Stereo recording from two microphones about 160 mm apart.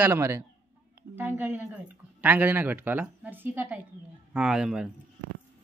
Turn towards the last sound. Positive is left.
turn(degrees=-5)  # may be behind; listen again after turning